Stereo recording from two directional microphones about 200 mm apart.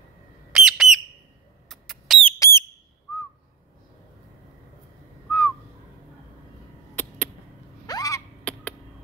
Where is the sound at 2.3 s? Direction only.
15° left (ahead or behind).